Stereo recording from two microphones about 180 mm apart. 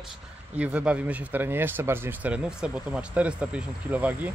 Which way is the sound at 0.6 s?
5° right (ahead or behind).